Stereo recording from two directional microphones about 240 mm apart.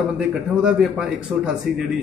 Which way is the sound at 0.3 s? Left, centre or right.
Centre.